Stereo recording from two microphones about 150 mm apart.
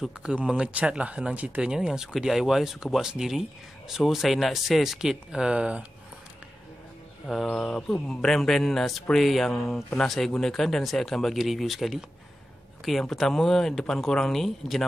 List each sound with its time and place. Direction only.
0.0 s speech: 5° right (ahead or behind)
7.2 s speech: 5° left (ahead or behind)